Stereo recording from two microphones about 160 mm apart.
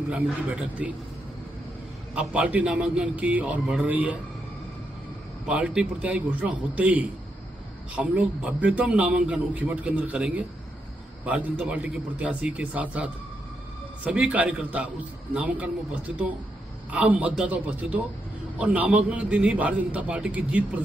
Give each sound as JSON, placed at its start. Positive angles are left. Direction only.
{"t": 0.1, "sound": "a man's voice", "side_deg": -10}
{"t": 2.1, "sound": "a man's voice", "side_deg": -5}
{"t": 5.5, "sound": "a man's voice", "side_deg": -5}
{"t": 16.9, "sound": "a man's voice", "side_deg": -10}